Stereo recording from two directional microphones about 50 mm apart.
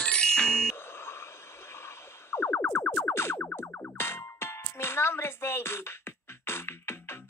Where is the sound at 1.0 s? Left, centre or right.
Left.